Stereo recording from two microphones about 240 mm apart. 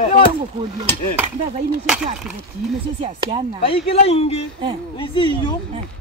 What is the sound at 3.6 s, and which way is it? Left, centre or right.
Speech, left.